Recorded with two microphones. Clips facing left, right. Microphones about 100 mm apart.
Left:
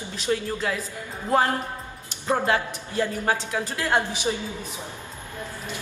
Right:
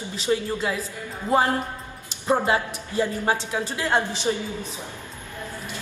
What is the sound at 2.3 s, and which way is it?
A man's voice, 10° right (ahead or behind).